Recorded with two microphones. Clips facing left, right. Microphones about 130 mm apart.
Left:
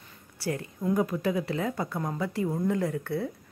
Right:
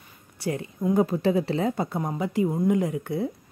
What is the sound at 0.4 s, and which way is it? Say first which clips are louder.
Speech: right 3 dB; 20° right (ahead or behind).